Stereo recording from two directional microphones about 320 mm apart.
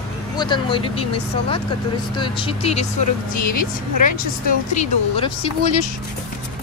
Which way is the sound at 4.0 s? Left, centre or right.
Left.